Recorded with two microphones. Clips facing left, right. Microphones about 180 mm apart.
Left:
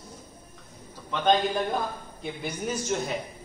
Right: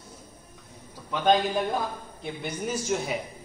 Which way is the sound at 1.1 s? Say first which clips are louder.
Right 1 dB; 5° right (ahead or behind).